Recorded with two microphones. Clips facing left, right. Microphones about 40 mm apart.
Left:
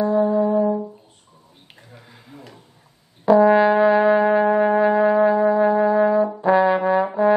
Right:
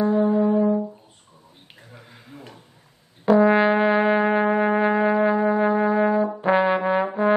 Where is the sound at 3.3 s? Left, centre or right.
Right.